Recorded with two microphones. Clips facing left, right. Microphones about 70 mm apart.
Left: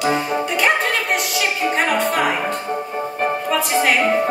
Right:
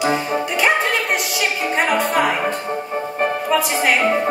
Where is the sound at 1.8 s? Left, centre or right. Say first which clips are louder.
Right 2 dB; centre.